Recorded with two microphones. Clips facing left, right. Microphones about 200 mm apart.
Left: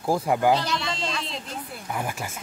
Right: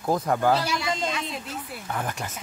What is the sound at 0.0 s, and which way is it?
Speech, 10° left (ahead or behind).